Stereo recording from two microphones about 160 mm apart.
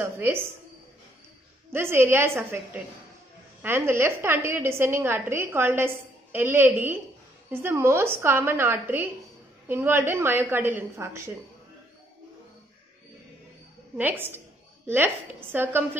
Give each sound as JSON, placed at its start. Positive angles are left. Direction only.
{"t": 0.0, "sound": "a sound", "side_deg": -15}
{"t": 1.7, "sound": "a woman's voice", "side_deg": -15}
{"t": 13.9, "sound": "a woman's voice", "side_deg": -10}
{"t": 15.5, "sound": "a woman's voice", "side_deg": -15}